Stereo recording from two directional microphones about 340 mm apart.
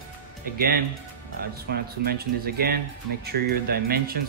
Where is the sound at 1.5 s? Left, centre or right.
Right.